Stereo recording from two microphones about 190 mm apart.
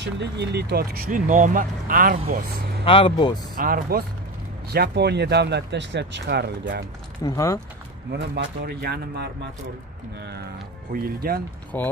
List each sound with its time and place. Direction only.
0.0 s speech: 65° right (ahead or behind); by 2.4 s 45° right (ahead or behind)
2.8 s speech: 30° left (ahead or behind)
3.5 s speech: 50° right (ahead or behind)
7.2 s speech: 15° left (ahead or behind)
8.1 s speech: 60° right (ahead or behind)
10.9 s speech: 50° right (ahead or behind)
11.7 s speech: 10° left (ahead or behind)